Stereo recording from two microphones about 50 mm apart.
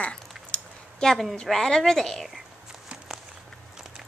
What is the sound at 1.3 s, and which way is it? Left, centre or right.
A woman's voice, centre.